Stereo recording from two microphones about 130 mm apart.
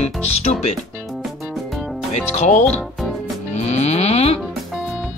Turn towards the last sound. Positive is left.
turn(degrees=55)  # may be behind; listen again after turning